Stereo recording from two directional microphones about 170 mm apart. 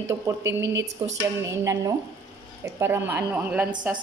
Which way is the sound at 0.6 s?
90° right.